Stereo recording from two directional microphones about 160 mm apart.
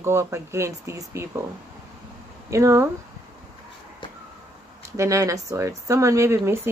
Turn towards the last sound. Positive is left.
turn(degrees=-15)  # may be behind; listen again after turning